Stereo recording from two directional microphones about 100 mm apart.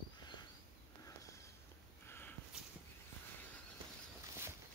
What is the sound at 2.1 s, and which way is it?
Walk, 20° left (ahead or behind).